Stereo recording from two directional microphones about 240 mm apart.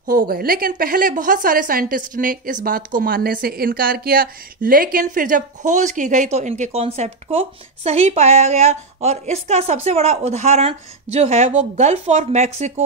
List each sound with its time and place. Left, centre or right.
0.0 s a woman's voice: right